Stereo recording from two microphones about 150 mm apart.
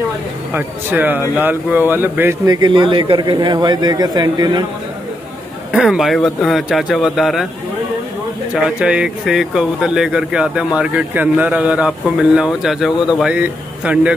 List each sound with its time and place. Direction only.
0.5 s speech: 10° right (ahead or behind)
2.4 s a man's voice: 25° right (ahead or behind)
5.7 s a man's voice: 5° right (ahead or behind)
8.6 s speech: 5° right (ahead or behind)